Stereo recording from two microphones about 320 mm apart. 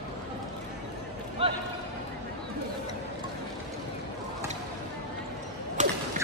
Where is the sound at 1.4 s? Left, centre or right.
Centre.